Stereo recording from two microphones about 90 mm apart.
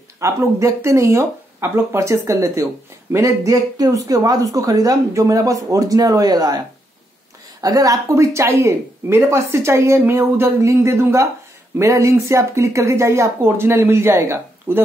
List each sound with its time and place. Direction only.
0.2 s speech: 35° right (ahead or behind)
7.6 s speech: 40° right (ahead or behind)